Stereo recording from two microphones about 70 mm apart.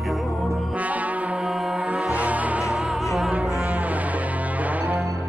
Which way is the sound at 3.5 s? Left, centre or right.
Right.